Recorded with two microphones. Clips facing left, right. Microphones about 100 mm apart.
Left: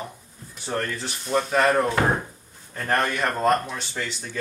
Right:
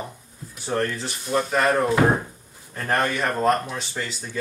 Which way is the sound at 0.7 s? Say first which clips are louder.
Right 3 dB; centre (ahead or behind).